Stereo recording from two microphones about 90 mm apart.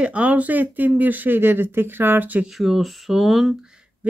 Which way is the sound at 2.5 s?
Centre (ahead or behind).